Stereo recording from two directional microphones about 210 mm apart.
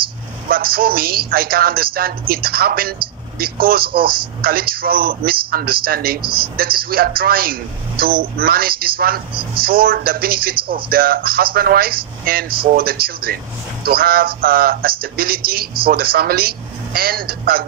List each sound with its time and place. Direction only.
0.5 s speech: 45° right (ahead or behind)
3.9 s speech: 25° right (ahead or behind)
4.4 s speech: 45° right (ahead or behind)
6.2 s speech: 25° right (ahead or behind)
6.5 s speech: 45° right (ahead or behind)